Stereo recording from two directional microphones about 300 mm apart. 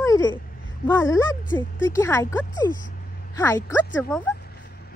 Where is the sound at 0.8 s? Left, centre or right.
Centre.